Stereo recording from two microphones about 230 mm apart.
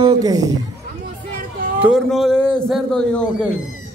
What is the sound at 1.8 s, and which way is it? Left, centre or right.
A man's voice, centre.